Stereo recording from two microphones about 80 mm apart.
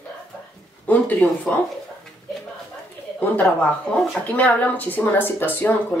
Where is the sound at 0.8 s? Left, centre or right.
Centre.